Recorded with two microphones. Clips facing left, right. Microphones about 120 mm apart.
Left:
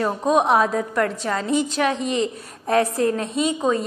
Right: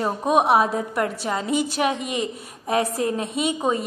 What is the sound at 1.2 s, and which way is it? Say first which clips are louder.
A woman's voice: left 2 dB; 15° right (ahead or behind).